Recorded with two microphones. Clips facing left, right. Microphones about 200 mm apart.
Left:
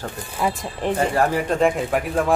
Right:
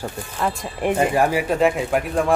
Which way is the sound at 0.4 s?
Centre (ahead or behind).